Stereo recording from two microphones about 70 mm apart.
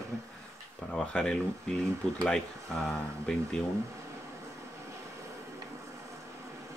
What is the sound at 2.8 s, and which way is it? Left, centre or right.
Speech, centre.